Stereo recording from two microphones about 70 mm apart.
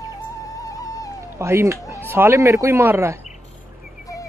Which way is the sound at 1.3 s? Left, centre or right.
Right.